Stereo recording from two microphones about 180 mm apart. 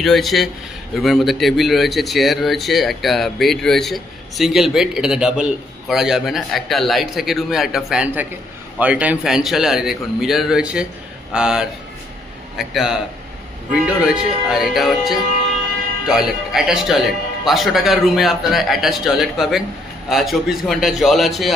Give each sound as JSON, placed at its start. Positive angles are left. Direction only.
{"t": 0.0, "sound": "speech", "side_deg": 0}